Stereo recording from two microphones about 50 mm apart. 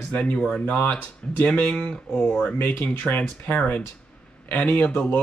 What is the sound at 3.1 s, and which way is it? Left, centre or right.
Speech, left.